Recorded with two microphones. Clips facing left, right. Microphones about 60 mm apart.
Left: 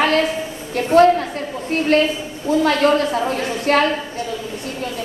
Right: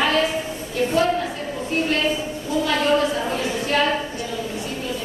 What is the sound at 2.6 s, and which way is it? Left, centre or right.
A woman's voice, left.